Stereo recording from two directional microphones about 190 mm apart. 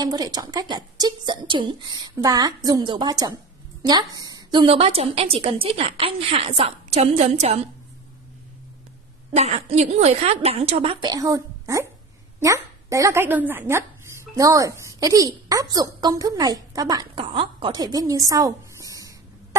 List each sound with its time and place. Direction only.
0.0 s a woman's voice: 20° right (ahead or behind)
9.3 s a woman's voice: 35° right (ahead or behind); by 19.1 s 20° right (ahead or behind)